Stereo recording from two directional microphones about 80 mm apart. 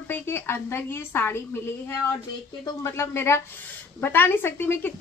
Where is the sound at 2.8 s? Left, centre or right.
Left.